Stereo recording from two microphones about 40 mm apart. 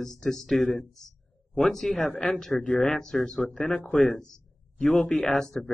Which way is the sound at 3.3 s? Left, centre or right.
Centre.